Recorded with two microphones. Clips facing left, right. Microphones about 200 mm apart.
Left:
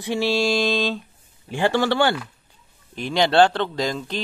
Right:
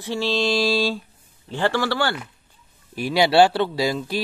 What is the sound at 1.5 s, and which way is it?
Speech, 15° left (ahead or behind).